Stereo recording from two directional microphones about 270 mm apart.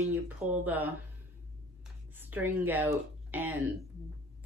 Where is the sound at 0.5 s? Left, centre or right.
Centre.